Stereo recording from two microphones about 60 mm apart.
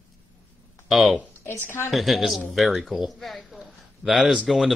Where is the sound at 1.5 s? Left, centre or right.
Left.